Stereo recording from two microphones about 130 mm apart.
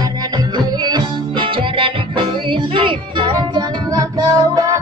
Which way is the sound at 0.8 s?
35° right (ahead or behind).